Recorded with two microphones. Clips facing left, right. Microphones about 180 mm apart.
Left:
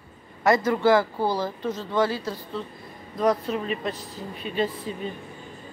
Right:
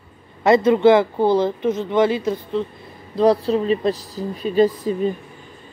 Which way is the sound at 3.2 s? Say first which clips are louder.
Right 7 dB; 30° right (ahead or behind).